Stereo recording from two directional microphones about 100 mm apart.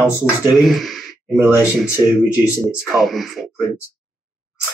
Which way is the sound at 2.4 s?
Centre (ahead or behind).